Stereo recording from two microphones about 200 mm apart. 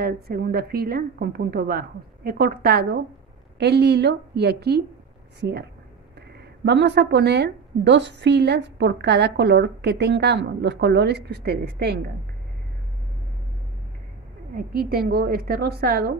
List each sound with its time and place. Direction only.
0.0 s a woman's voice: 50° right (ahead or behind)
14.5 s a woman's voice: 45° right (ahead or behind)